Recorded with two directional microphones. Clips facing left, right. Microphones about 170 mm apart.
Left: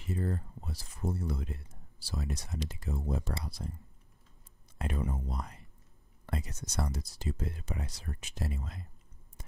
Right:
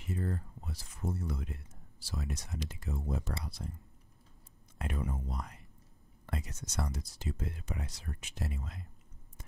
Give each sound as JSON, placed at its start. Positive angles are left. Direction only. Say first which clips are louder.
{"t": 0.0, "sound": "speech", "louder": "left 2 dB", "side_deg": 30}
{"t": 4.7, "sound": "speech", "louder": "left 2 dB", "side_deg": 30}